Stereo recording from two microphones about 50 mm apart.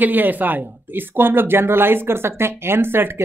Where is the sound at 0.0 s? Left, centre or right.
Right.